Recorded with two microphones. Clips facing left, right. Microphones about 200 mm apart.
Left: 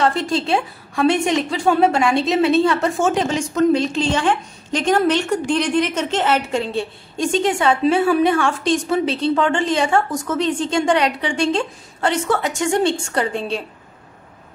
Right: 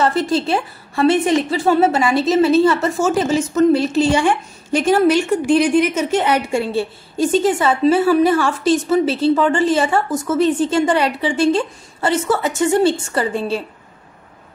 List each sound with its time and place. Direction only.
0.0 s a woman's voice: 5° right (ahead or behind)